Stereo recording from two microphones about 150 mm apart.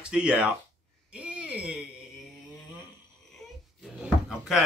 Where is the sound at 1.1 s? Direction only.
10° right (ahead or behind).